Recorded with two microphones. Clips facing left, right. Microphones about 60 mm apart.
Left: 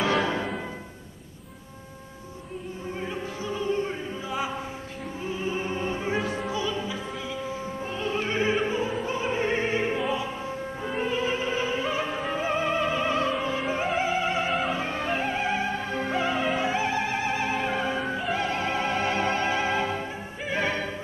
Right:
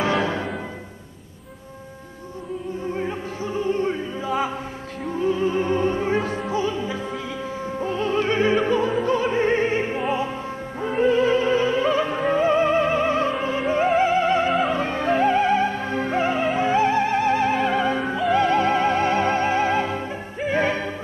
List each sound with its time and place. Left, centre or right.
3.0 s opera: right
6.5 s music: right
7.8 s music: right
8.5 s opera: right
9.0 s music: right
10.8 s music: right
13.8 s opera: right
14.7 s music: right
15.8 s music: centre
16.1 s music: right
20.4 s music: right